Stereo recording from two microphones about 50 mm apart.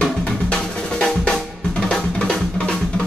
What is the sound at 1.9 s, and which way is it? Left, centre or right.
Music, centre.